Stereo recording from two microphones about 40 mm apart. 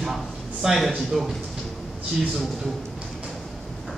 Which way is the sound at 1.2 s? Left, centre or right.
Centre.